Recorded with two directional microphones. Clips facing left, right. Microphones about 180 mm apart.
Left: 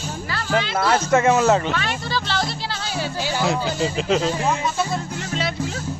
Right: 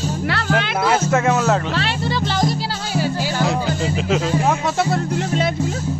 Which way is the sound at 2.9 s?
Centre (ahead or behind).